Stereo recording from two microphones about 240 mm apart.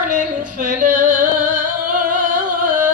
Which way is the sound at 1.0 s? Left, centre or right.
Right.